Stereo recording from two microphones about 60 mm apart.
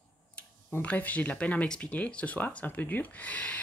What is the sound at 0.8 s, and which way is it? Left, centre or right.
Speech, left.